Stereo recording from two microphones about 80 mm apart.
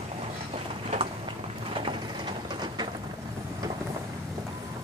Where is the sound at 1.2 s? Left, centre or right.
Right.